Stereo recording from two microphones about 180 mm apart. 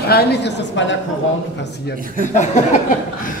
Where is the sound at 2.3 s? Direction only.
45° left (ahead or behind).